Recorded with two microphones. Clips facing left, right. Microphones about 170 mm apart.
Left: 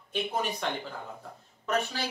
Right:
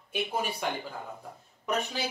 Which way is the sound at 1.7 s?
15° right (ahead or behind).